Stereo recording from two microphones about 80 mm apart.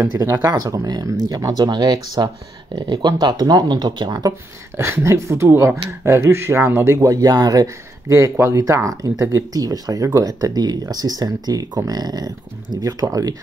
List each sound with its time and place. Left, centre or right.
0.0 s speech: right
0.5 s speech: right
4.7 s speech: right
5.5 s speech: right